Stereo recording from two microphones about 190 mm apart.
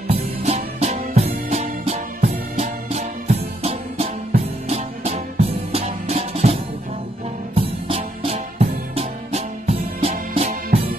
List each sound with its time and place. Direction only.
0.1 s music: 35° right (ahead or behind)